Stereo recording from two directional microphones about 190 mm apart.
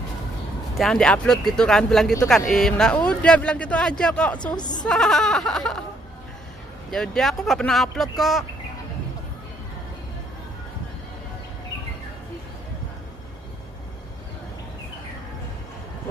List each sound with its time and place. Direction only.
0.7 s speech: 5° left (ahead or behind)
4.6 s a woman's voice: 20° left (ahead or behind)
4.8 s speech: centre (ahead or behind)
6.9 s speech: centre (ahead or behind)